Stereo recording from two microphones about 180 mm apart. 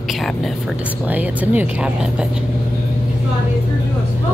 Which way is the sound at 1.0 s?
10° right (ahead or behind).